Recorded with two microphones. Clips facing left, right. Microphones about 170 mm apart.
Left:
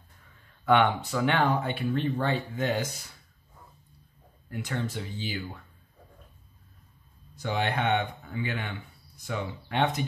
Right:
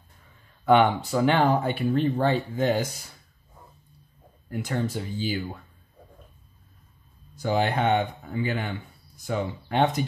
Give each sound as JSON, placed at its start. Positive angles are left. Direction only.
{"t": 0.7, "sound": "speech", "side_deg": -30}
{"t": 4.5, "sound": "speech", "side_deg": -35}
{"t": 7.4, "sound": "speech", "side_deg": -35}